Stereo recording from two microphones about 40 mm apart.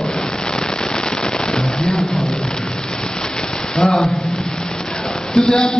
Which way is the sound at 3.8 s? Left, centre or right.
Centre.